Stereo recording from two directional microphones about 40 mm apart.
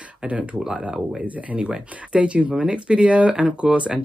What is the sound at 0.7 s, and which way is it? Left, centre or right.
Speech, centre.